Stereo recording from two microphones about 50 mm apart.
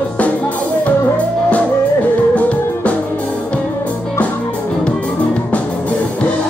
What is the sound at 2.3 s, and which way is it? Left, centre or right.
Music, left.